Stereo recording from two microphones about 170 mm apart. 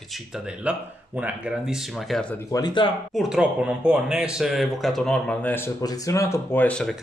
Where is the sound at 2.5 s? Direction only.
25° left (ahead or behind).